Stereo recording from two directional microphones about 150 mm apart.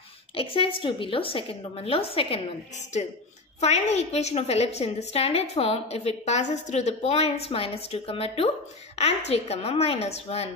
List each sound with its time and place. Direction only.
0.4 s a woman's voice: 40° left (ahead or behind)
3.6 s a woman's voice: 45° left (ahead or behind)